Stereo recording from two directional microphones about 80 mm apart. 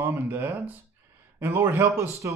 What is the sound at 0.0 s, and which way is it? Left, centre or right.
Speech, right.